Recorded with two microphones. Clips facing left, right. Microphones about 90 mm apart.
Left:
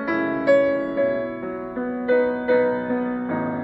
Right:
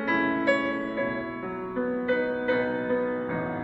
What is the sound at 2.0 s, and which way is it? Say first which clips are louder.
Music: left 9 dB; 15° left (ahead or behind).